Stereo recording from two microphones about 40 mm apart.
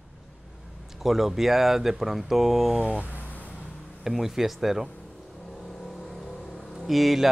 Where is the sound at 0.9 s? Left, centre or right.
Centre.